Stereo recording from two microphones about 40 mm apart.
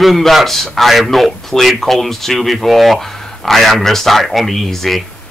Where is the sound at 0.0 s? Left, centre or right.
Centre.